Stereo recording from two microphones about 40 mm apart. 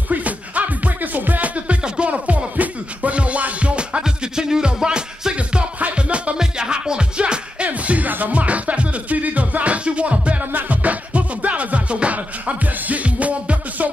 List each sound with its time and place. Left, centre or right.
0.1 s music: right
4.0 s music: centre
6.3 s music: centre
10.4 s music: right